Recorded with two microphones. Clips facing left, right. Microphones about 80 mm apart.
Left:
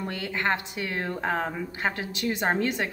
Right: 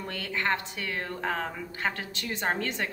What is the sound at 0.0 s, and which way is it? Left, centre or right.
A woman's voice, centre.